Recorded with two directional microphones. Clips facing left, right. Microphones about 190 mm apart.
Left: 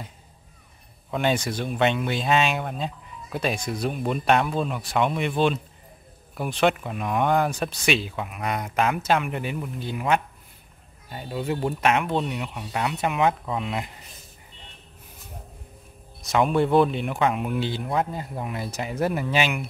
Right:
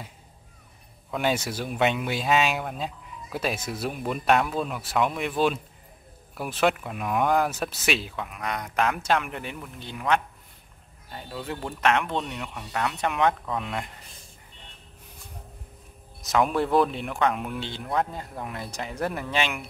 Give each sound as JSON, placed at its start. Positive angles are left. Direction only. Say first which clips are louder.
{"t": 1.1, "sound": "speech", "louder": "left 2 dB", "side_deg": -5}
{"t": 16.2, "sound": "speech", "louder": "left 2 dB", "side_deg": 0}